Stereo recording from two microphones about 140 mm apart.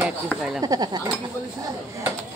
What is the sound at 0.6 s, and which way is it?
Speech, 30° right (ahead or behind).